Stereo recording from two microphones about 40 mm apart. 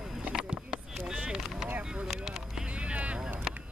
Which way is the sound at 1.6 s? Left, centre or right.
Right.